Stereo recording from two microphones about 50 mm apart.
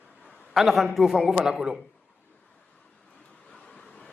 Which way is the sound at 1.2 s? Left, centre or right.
Centre.